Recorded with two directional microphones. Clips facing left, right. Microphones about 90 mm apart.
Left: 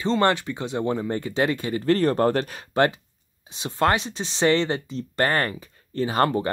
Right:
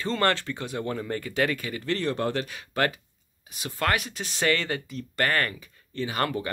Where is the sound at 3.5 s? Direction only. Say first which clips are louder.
Left 5 dB; 25° left (ahead or behind).